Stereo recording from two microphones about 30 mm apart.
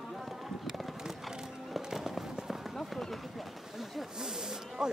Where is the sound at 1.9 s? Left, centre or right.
Centre.